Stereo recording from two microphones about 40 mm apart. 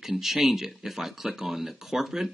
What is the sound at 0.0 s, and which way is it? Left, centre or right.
Speech, centre.